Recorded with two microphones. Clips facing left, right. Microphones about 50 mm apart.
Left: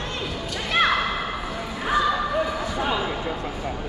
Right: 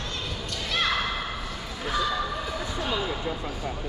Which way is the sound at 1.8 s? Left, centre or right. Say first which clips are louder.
Left 5 dB; centre.